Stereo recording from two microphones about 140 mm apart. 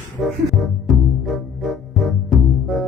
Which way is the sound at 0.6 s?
Centre (ahead or behind).